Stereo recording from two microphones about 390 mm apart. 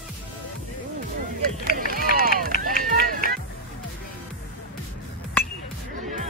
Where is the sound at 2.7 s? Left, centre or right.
Right.